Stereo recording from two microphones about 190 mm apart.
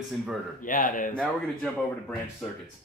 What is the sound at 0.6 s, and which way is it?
Speech, 45° left (ahead or behind).